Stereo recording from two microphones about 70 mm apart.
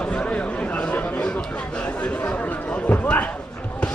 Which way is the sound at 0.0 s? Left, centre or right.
Centre.